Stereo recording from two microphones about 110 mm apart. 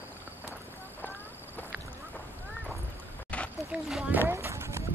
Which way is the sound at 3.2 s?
10° left (ahead or behind).